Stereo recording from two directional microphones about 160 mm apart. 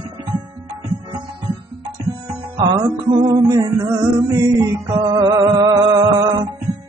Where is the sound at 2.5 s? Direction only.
30° right (ahead or behind).